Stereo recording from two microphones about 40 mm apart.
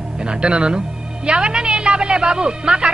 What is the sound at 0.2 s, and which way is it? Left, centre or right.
A woman's voice, right.